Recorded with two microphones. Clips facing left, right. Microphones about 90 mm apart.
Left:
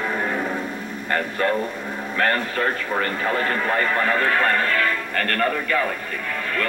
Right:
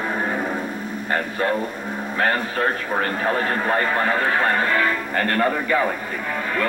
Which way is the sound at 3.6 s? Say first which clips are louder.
Right 1 dB; 35° right (ahead or behind).